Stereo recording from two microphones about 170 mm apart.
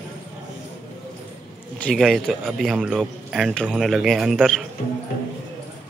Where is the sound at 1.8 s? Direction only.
5° left (ahead or behind).